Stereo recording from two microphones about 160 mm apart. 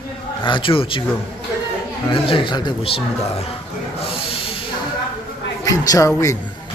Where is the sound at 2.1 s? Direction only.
35° left (ahead or behind).